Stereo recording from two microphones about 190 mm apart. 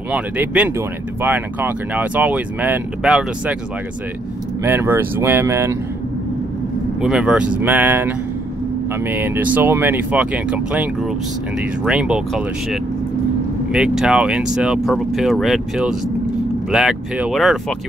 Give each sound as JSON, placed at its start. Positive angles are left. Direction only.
{"t": 0.1, "sound": "speech", "side_deg": -10}
{"t": 4.6, "sound": "speech", "side_deg": -10}
{"t": 7.0, "sound": "speech", "side_deg": -5}